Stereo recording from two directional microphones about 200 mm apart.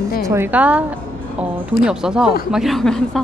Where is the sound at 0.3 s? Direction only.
10° right (ahead or behind).